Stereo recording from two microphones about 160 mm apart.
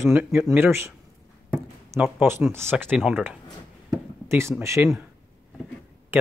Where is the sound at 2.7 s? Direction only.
5° right (ahead or behind).